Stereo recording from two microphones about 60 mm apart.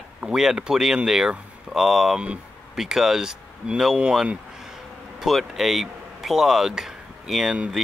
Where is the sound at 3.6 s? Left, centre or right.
Right.